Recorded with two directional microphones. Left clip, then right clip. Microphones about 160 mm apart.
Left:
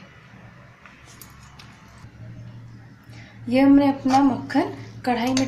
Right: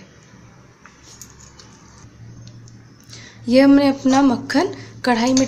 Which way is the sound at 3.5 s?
60° right (ahead or behind).